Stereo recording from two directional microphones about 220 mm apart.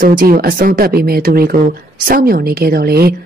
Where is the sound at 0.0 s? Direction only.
40° right (ahead or behind).